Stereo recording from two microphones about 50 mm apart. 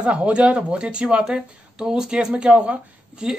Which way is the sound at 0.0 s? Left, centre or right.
Right.